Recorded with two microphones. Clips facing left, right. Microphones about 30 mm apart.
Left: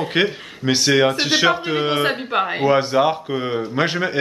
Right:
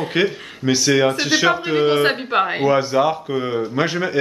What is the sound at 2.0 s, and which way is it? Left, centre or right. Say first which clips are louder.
Speech: right 2 dB; centre.